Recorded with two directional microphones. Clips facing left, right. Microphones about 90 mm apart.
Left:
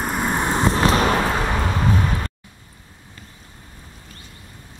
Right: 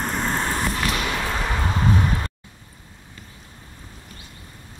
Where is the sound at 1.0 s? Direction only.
45° left (ahead or behind).